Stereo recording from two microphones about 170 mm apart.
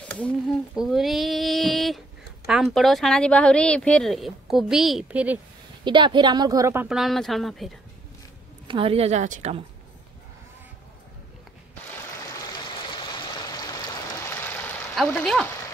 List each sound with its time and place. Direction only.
0.0 s speech: 10° left (ahead or behind); by 5.4 s 10° right (ahead or behind)
5.9 s a woman's voice: 25° right (ahead or behind)
7.0 s speech: centre (ahead or behind)
8.6 s speech: 30° right (ahead or behind)
13.5 s a sound: 20° left (ahead or behind)
15.0 s speech: 5° left (ahead or behind)